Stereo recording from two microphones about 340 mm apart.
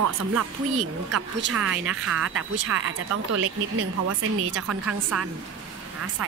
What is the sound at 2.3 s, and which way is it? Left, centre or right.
Speech, right.